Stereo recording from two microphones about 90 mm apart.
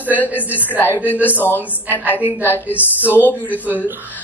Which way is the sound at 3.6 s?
20° right (ahead or behind).